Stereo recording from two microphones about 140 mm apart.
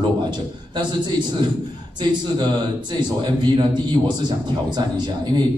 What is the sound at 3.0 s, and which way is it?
Speech, 35° right (ahead or behind).